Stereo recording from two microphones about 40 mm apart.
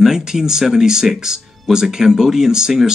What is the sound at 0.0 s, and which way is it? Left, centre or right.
Speech, centre.